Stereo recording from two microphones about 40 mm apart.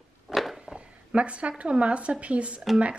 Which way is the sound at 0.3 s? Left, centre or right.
Right.